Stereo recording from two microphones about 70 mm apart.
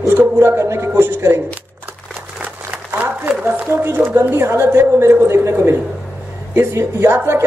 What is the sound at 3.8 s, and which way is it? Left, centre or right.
A woman's voice, right.